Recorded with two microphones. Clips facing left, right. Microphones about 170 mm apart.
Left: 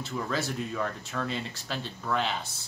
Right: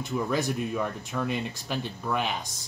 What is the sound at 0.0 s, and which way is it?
Speech, 15° right (ahead or behind).